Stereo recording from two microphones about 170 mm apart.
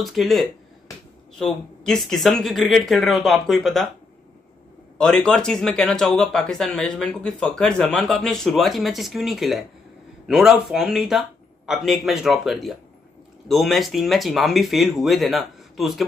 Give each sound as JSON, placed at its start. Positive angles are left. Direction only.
{"t": 0.0, "sound": "speech", "side_deg": 0}
{"t": 4.9, "sound": "speech", "side_deg": 5}